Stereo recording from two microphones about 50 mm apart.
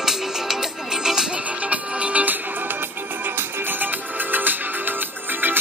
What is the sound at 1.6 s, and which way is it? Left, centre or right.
Music, right.